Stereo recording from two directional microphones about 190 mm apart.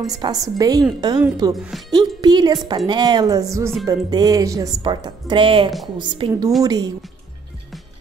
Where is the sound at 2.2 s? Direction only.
20° right (ahead or behind).